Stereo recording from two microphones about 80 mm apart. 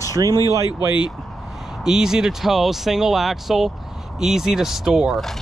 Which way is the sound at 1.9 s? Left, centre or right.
Centre.